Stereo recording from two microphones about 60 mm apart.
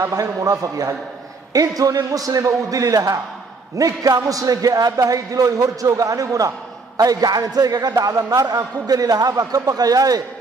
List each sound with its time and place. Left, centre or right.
0.1 s a man's voice: right
3.7 s a man's voice: right